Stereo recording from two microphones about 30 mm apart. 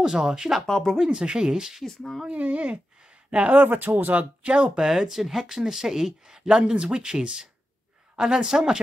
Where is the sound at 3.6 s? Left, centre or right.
Right.